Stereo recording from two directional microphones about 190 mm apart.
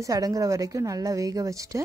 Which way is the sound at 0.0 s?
20° right (ahead or behind).